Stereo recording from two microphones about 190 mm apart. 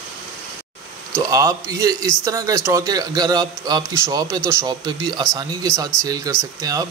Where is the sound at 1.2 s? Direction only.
15° right (ahead or behind).